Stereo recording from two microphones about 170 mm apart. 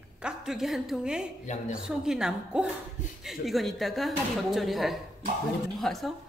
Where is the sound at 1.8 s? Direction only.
5° right (ahead or behind).